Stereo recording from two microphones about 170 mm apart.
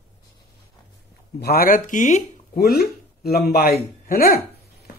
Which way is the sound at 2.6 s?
65° left (ahead or behind).